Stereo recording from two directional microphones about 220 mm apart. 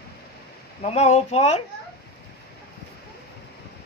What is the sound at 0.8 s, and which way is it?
Speech, 30° left (ahead or behind).